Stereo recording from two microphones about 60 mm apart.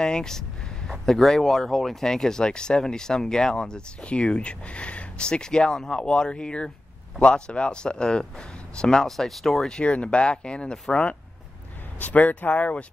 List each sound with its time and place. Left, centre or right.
0.0 s speech: centre
9.8 s speech: centre
12.0 s speech: left